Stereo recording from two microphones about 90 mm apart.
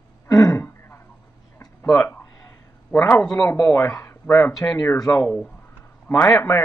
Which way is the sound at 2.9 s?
30° left (ahead or behind).